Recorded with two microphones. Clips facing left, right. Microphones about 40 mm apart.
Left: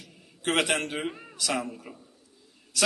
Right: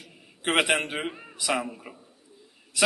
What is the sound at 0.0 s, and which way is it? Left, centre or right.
A man's voice, centre.